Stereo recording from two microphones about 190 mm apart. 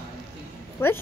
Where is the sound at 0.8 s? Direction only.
10° left (ahead or behind).